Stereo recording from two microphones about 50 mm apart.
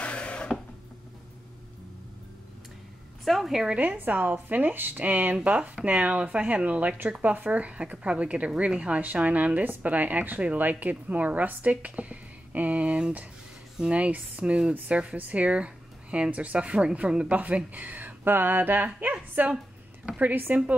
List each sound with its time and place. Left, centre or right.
0.0 s wood: left
3.3 s a woman's voice: centre
3.8 s speech: right
14.4 s speech: centre; by 20.5 s right